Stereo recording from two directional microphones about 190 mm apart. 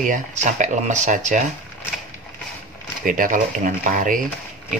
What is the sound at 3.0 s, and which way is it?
Speech, 45° right (ahead or behind).